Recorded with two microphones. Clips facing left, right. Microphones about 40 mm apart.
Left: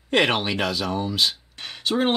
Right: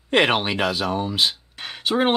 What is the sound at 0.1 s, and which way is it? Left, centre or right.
Speech, centre.